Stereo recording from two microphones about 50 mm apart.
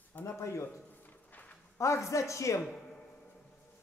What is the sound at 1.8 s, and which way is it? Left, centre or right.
Speech, left.